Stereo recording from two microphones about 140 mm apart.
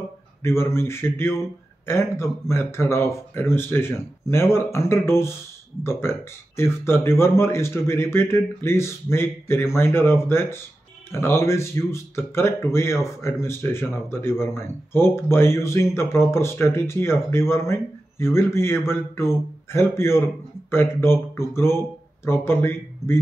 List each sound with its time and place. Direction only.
0.4 s speech: 20° left (ahead or behind)